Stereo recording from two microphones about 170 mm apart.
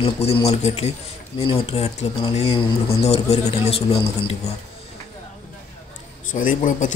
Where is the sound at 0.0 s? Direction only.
35° left (ahead or behind).